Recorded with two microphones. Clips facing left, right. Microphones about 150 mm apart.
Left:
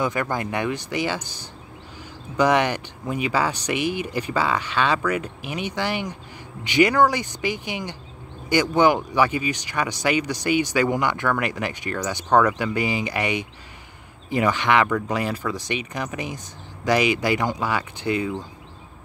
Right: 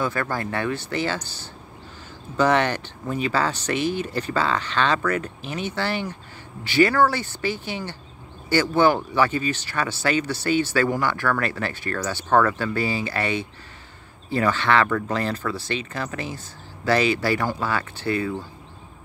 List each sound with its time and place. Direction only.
0.0 s speech: 15° left (ahead or behind)